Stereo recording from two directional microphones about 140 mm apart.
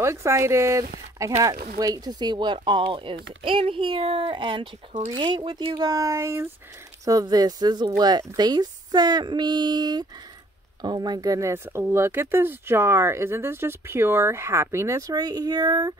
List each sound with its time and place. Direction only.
0.0 s speech: 20° right (ahead or behind); by 5.8 s 40° right (ahead or behind)
5.8 s speech: 25° right (ahead or behind)